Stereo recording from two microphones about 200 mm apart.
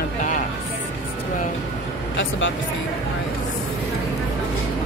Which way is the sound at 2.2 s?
70° left (ahead or behind).